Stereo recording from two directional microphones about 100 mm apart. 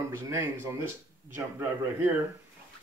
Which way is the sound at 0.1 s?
25° right (ahead or behind).